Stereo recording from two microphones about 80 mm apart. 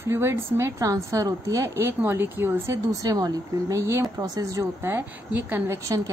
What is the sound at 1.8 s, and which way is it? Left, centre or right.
Speech, right.